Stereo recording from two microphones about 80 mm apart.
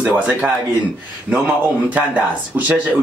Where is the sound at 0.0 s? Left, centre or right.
Centre.